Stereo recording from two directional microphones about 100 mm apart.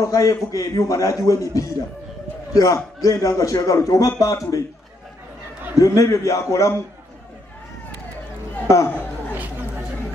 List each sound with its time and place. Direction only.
0.0 s a man's voice: 30° left (ahead or behind)
5.8 s a man's voice: 35° left (ahead or behind)
8.6 s a sound: 30° left (ahead or behind)